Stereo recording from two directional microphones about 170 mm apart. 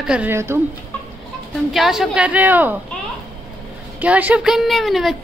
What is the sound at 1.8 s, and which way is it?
Speech, centre (ahead or behind).